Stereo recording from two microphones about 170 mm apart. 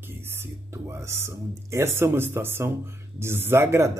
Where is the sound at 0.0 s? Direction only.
15° right (ahead or behind).